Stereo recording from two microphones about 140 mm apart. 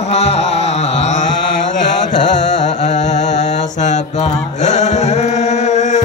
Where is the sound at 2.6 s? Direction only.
55° left (ahead or behind).